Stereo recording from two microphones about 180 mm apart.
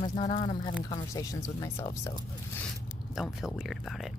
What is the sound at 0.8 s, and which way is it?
Speech, 20° left (ahead or behind).